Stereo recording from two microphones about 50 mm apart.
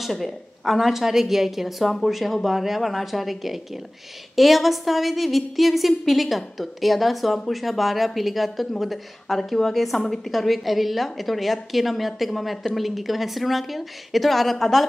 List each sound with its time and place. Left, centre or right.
0.0 s a woman's voice: centre